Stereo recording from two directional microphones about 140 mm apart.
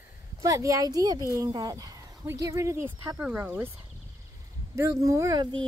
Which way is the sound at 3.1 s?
10° right (ahead or behind).